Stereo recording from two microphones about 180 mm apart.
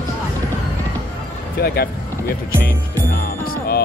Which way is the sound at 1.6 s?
55° left (ahead or behind).